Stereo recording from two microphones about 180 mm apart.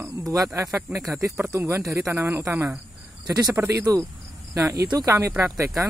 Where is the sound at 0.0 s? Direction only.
20° right (ahead or behind).